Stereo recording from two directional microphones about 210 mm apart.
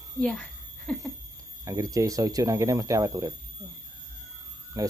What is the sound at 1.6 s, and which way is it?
Speech, 15° right (ahead or behind).